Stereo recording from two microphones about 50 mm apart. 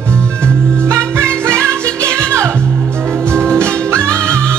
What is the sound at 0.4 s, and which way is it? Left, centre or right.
Music, right.